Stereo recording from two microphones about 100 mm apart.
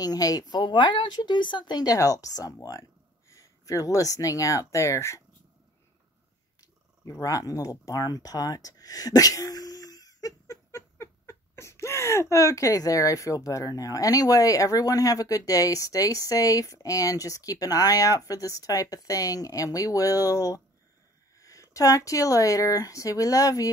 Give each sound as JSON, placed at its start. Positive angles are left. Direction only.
{"t": 0.0, "sound": "speech", "side_deg": 40}
{"t": 6.6, "sound": "speech", "side_deg": 35}
{"t": 10.4, "sound": "a sound", "side_deg": 30}